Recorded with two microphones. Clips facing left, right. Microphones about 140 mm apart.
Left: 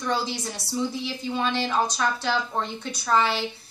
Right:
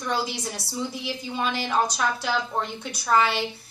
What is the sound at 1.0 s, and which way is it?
Speech, 10° right (ahead or behind).